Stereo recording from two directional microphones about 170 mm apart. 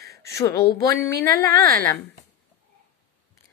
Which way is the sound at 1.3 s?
60° right (ahead or behind).